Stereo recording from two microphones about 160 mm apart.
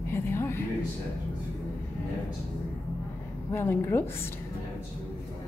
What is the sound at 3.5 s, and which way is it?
Speech, 15° left (ahead or behind).